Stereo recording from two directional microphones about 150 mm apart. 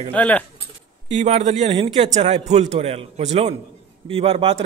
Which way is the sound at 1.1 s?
45° right (ahead or behind).